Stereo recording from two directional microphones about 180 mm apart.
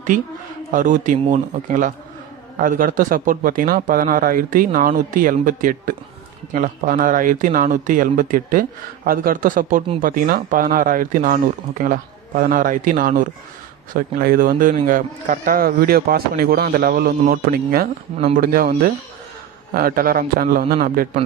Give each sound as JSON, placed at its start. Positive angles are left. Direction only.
{"t": 0.7, "sound": "a man's voice", "side_deg": -45}